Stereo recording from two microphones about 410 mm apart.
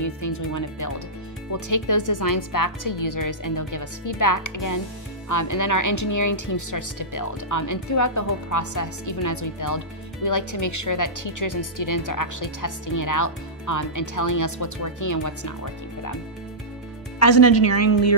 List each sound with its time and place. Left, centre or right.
0.0 s speech: left
17.2 s a woman's voice: left